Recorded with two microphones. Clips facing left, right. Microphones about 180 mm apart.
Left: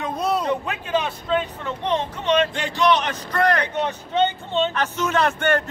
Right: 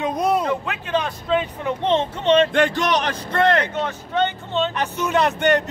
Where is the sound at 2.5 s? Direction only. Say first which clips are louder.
Right 1 dB; 55° right (ahead or behind); by 3.6 s 25° right (ahead or behind).